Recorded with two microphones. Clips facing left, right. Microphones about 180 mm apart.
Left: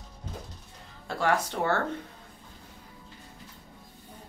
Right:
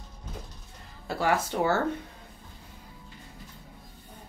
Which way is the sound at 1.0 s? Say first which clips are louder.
Even; 5° right (ahead or behind).